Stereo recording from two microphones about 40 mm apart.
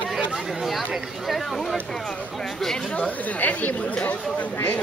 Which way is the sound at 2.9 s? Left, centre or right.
Left.